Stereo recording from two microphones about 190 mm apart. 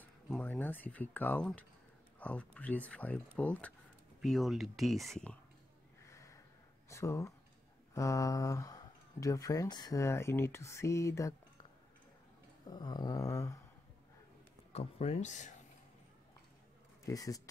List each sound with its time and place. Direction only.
0.0 s speech: 10° left (ahead or behind)
6.0 s snort: 15° left (ahead or behind)
6.9 s speech: 15° left (ahead or behind)
12.6 s a sound: 20° left (ahead or behind)
14.7 s speech: 35° left (ahead or behind)
17.0 s speech: 20° left (ahead or behind)